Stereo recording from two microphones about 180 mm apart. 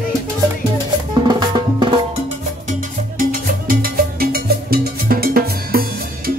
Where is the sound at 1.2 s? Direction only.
25° right (ahead or behind).